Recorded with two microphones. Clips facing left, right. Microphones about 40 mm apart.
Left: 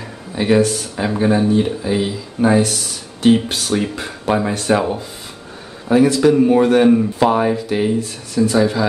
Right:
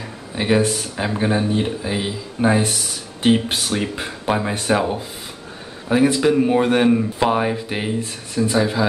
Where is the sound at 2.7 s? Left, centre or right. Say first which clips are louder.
Left 1 dB; centre.